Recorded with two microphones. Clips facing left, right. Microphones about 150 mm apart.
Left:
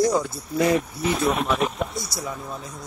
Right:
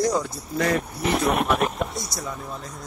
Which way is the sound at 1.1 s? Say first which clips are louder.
Right 1 dB; 65° right (ahead or behind).